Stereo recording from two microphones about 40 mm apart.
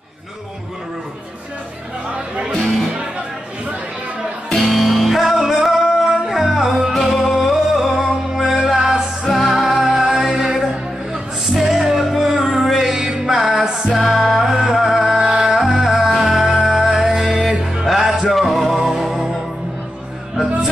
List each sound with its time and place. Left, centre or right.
2.6 s music: centre
4.6 s music: centre
9.2 s music: centre
13.9 s music: centre
14.4 s music: centre
15.1 s music: right
15.5 s music: centre